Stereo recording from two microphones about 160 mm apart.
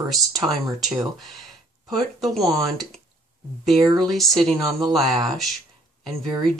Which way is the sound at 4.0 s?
Centre (ahead or behind).